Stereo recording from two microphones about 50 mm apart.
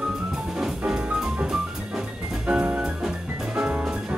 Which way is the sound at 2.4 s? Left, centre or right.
Right.